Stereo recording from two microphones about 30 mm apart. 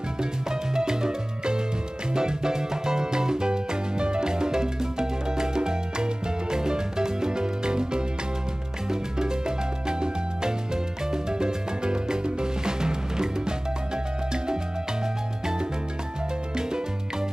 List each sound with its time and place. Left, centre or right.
0.2 s music: right
16.5 s music: right